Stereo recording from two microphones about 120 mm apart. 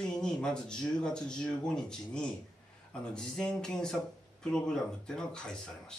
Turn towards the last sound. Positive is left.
turn(degrees=5)  # may be behind; listen again after turning